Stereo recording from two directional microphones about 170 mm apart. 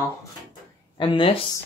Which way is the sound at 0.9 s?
30° left (ahead or behind).